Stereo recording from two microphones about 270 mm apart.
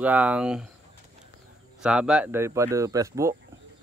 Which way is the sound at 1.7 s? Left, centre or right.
Centre.